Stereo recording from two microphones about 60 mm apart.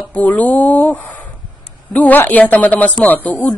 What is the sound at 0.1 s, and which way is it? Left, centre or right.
Speech, left.